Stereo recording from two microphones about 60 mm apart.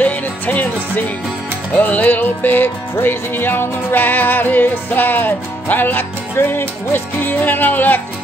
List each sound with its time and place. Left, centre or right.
0.0 s music: left